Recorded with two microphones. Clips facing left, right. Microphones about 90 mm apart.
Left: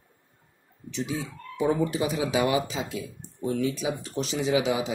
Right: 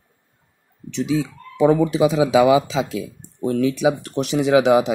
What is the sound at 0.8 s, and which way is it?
Speech, 80° right.